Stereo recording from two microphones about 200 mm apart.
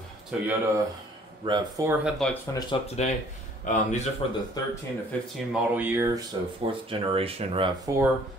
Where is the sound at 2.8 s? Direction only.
35° left (ahead or behind).